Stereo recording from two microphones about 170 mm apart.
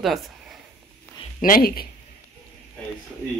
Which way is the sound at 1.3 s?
55° left (ahead or behind).